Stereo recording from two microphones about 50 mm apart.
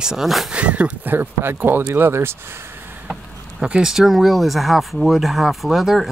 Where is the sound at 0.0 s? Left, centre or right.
Centre.